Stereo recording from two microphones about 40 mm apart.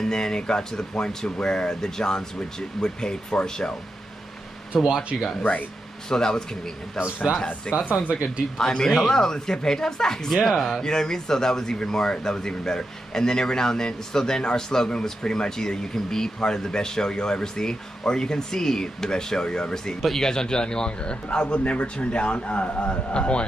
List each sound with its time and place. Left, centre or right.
0.0 s a man's voice: centre
4.9 s speech: centre
5.4 s speech: left
6.0 s a man's voice: centre
8.1 s speech: right
8.5 s a man's voice: centre